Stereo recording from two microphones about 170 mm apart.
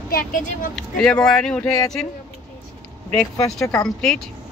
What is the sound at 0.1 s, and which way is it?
Speech, 55° left (ahead or behind).